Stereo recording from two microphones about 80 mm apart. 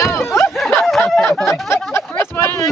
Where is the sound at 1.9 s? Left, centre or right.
Left.